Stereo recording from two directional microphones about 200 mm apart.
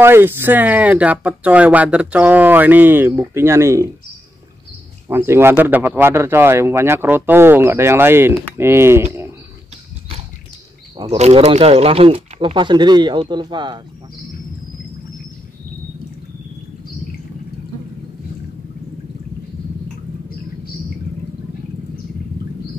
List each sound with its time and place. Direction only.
0.0 s speech: 10° right (ahead or behind)
5.0 s speech: 10° right (ahead or behind)
11.0 s speech: 30° right (ahead or behind)